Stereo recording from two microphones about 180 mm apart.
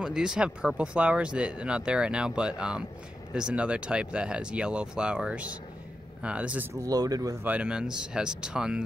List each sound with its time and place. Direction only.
0.0 s speech: 5° right (ahead or behind); by 7.5 s 20° right (ahead or behind)
7.5 s speech: 5° right (ahead or behind)